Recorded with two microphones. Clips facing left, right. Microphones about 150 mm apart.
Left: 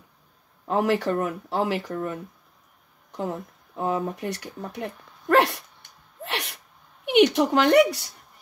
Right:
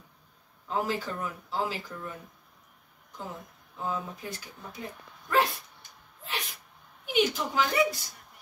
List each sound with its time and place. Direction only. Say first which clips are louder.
0.7 s speech: left 8 dB; 70° left (ahead or behind)
3.1 s a sound: left 10 dB; 75° left (ahead or behind)
7.1 s speech: left 9 dB; 75° left (ahead or behind)